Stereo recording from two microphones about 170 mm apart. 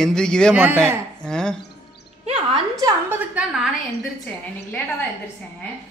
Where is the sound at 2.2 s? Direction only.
40° right (ahead or behind).